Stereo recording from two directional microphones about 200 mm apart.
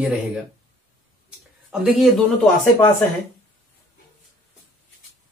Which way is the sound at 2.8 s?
10° left (ahead or behind).